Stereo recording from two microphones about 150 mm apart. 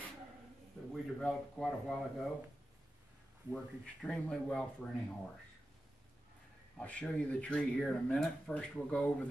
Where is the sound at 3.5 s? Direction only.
5° left (ahead or behind).